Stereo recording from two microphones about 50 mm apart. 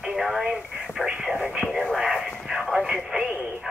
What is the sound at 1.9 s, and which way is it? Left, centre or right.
Radio, centre.